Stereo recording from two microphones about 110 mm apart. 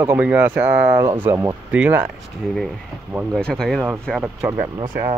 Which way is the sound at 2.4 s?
Centre (ahead or behind).